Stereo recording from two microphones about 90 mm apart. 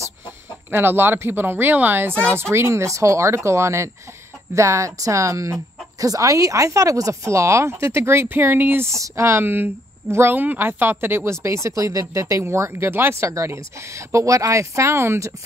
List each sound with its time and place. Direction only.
0.7 s a woman's voice: 25° right (ahead or behind)